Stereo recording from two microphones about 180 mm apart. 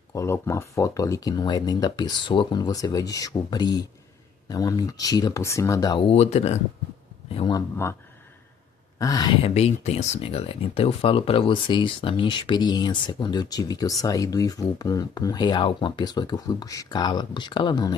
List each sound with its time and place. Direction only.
0.1 s speech: 15° left (ahead or behind); by 6.6 s 35° left (ahead or behind)
7.3 s speech: 25° left (ahead or behind)
8.9 s speech: 20° left (ahead or behind)
9.5 s speech: 35° left (ahead or behind)